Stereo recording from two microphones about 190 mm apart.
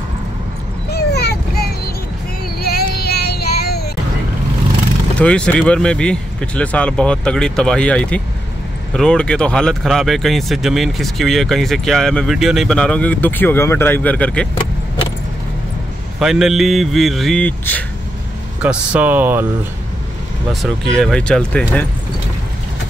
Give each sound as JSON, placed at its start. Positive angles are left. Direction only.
{"t": 0.8, "sound": "a sound", "side_deg": 60}
{"t": 2.6, "sound": "child singing", "side_deg": 55}
{"t": 5.2, "sound": "speech", "side_deg": 5}
{"t": 16.2, "sound": "speech", "side_deg": 0}
{"t": 18.6, "sound": "speech", "side_deg": -5}
{"t": 20.6, "sound": "speech", "side_deg": 0}